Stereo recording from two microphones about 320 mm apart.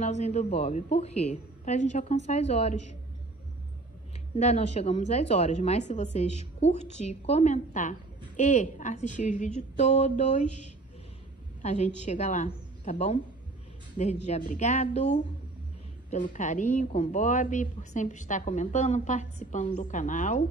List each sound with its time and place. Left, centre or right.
0.0 s speech: left
4.4 s speech: centre
11.6 s speech: left
14.2 s speech: left